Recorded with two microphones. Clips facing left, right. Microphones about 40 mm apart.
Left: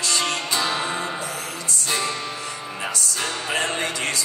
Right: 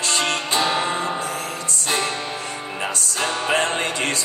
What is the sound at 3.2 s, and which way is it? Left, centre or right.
Music, right.